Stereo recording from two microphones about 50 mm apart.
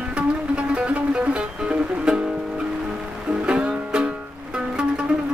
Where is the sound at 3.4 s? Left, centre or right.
Right.